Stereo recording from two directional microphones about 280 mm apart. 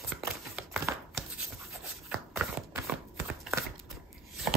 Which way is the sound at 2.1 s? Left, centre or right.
Centre.